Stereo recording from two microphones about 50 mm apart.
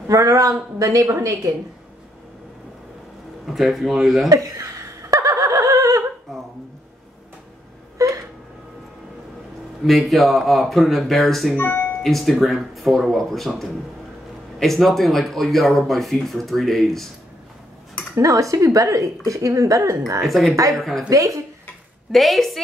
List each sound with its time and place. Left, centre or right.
0.2 s speech: right
3.4 s speech: centre
4.3 s laughter: right
8.0 s a sound: right
9.8 s speech: centre
11.5 s speech: left
12.0 s speech: centre
14.6 s speech: centre
18.1 s speech: right
20.2 s speech: centre
21.1 s speech: right
22.1 s speech: centre